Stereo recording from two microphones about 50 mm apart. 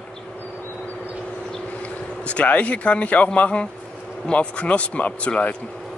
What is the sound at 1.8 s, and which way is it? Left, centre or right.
Speech, left.